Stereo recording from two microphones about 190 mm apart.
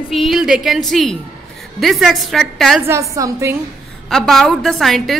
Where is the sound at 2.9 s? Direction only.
15° right (ahead or behind).